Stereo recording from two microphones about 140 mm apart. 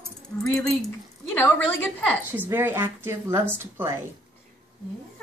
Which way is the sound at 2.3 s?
15° right (ahead or behind).